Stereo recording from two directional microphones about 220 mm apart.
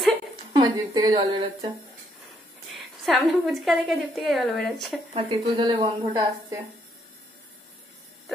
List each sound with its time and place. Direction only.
0.4 s a woman's voice: 20° right (ahead or behind)
2.8 s a woman's voice: centre (ahead or behind)
5.3 s speech: 20° right (ahead or behind)